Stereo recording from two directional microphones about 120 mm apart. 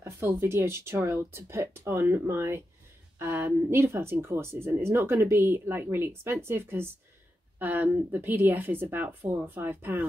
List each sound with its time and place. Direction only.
0.3 s a woman's voice: 20° right (ahead or behind)